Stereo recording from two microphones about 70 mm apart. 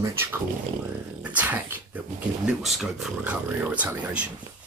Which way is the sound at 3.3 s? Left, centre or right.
Right.